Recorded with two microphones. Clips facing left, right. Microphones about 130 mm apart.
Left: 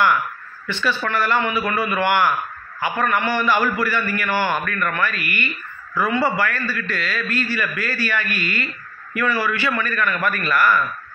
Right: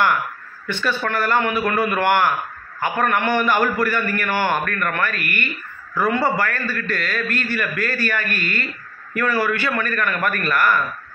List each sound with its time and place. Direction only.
0.7 s a man's voice: 50° right (ahead or behind)